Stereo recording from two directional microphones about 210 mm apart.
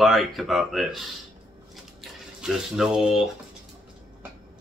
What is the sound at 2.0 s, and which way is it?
Speech, 5° right (ahead or behind).